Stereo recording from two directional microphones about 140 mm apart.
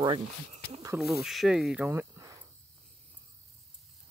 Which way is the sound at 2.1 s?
25° right (ahead or behind).